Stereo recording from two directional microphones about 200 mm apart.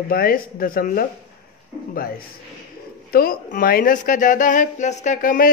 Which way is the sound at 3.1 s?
50° left (ahead or behind).